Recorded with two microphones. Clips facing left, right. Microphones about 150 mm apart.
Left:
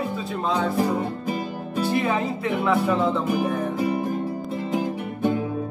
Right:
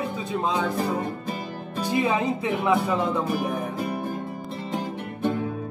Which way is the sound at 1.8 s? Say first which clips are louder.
Left 1 dB; 15° right (ahead or behind).